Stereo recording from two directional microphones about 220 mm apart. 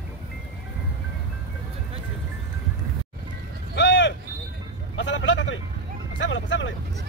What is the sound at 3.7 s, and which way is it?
Vehicle, 55° left (ahead or behind).